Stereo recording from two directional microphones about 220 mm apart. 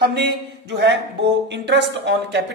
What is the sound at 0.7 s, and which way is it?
A woman's voice, 50° right (ahead or behind).